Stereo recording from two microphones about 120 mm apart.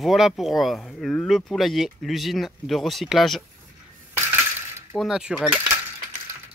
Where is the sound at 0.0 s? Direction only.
Centre (ahead or behind).